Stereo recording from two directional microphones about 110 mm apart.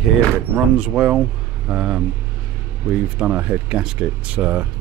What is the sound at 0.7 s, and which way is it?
Speech, 10° right (ahead or behind).